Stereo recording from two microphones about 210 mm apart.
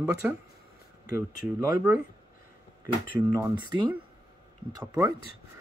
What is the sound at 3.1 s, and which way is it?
Speech, 15° right (ahead or behind).